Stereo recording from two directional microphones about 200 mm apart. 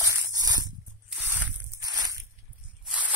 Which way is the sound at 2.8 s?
5° right (ahead or behind).